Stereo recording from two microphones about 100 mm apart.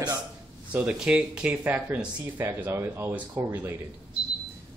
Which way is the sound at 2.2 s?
30° right (ahead or behind).